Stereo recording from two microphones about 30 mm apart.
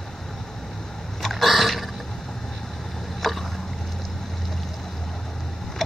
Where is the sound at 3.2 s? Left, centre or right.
Centre.